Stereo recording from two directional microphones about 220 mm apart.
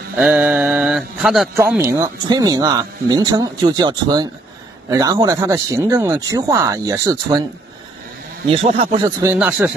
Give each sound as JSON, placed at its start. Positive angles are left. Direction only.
{"t": 0.2, "sound": "mantra", "side_deg": -5}
{"t": 1.6, "sound": "speech", "side_deg": -10}
{"t": 9.0, "sound": "speech", "side_deg": -10}